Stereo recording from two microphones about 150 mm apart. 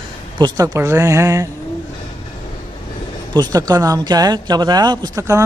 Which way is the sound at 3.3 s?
25° right (ahead or behind).